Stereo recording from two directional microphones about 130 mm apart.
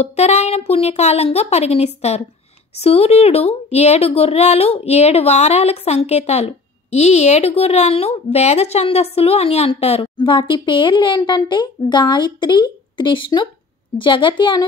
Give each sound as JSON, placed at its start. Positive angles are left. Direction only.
{"t": 0.0, "sound": "a woman's voice", "side_deg": 55}
{"t": 10.1, "sound": "speech", "side_deg": 40}